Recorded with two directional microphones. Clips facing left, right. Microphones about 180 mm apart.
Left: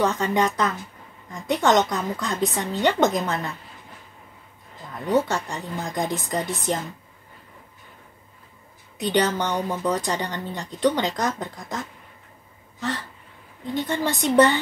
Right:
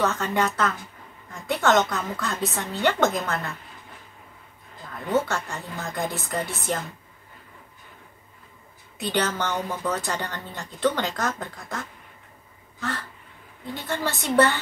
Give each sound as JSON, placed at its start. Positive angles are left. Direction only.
{"t": 0.0, "sound": "speech", "side_deg": 15}
{"t": 5.0, "sound": "speech", "side_deg": 15}
{"t": 8.9, "sound": "speech", "side_deg": 15}
{"t": 13.7, "sound": "speech", "side_deg": 15}